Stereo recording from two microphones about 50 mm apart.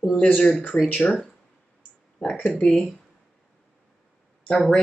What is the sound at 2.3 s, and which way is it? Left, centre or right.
Speech, left.